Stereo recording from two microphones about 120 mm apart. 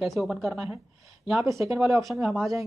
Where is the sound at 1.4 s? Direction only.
25° right (ahead or behind).